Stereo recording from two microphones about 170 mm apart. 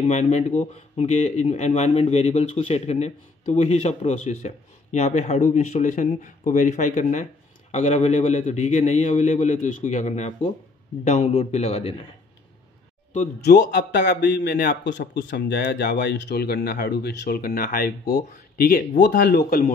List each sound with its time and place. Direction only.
0.0 s a man's voice: 40° left (ahead or behind)
13.4 s a man's voice: 75° left (ahead or behind)